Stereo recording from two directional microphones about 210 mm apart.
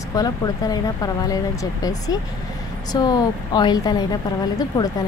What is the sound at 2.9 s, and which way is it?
Speech, 20° left (ahead or behind).